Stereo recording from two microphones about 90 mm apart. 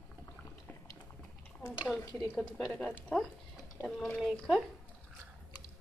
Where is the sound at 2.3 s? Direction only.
10° left (ahead or behind).